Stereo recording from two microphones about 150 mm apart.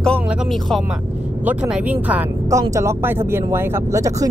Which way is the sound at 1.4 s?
10° right (ahead or behind).